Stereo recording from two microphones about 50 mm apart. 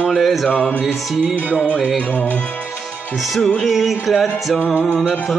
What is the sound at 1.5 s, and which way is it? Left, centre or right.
Music, left.